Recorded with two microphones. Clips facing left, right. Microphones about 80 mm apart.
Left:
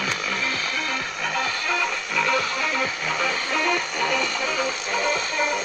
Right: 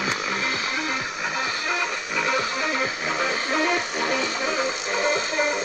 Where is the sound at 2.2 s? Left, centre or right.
Centre.